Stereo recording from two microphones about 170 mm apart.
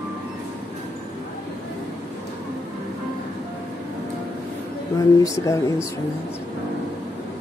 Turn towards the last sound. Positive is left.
turn(degrees=20)  # may be behind; listen again after turning